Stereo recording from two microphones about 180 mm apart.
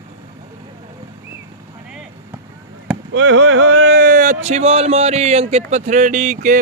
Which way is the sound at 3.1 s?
90° right.